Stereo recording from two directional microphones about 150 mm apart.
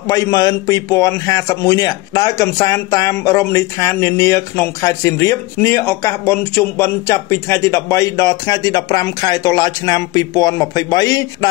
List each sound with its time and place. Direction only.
0.1 s a man's voice: 25° left (ahead or behind)